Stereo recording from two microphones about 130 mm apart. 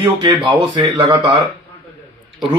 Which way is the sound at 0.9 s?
45° right (ahead or behind).